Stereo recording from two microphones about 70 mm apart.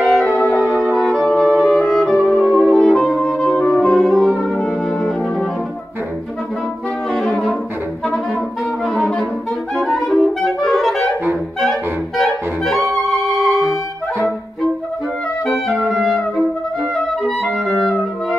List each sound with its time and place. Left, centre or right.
0.0 s music: centre
3.3 s music: centre
3.6 s brass instrument: centre
7.1 s saxophone: centre
8.8 s brass instrument: centre
9.8 s saxophone: centre
15.4 s clarinet: centre
15.9 s music: centre